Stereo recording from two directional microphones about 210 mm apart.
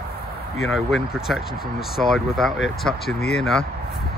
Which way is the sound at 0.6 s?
Centre (ahead or behind).